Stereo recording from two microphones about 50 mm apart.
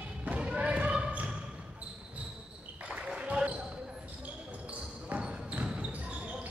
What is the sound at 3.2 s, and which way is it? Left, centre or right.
Basketball bounce, right.